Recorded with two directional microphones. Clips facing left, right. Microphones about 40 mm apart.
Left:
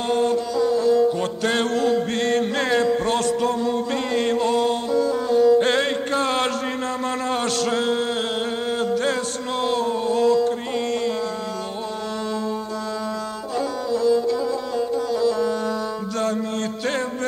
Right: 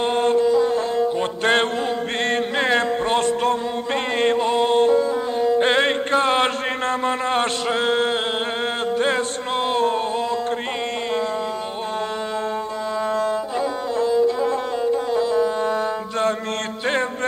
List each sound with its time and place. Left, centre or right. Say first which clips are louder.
0.0 s music: right 3 dB; right
6.9 s a man's voice: right 5 dB; right
9.0 s a sound: right 2 dB; right
13.6 s music: left 4 dB; right